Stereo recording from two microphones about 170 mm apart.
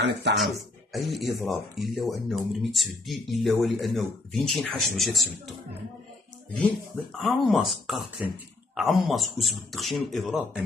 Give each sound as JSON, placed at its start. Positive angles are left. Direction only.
{"t": 0.0, "sound": "speech", "side_deg": -85}
{"t": 0.9, "sound": "speech", "side_deg": 0}
{"t": 7.1, "sound": "speech", "side_deg": 0}